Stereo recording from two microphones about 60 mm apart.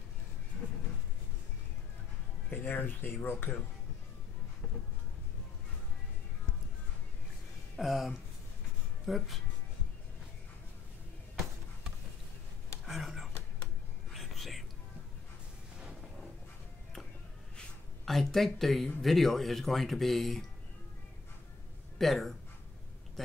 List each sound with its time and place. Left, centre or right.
2.5 s speech: left
7.8 s speech: centre
12.8 s a sound: centre
14.1 s whispering: centre
18.0 s speech: centre
21.9 s speech: centre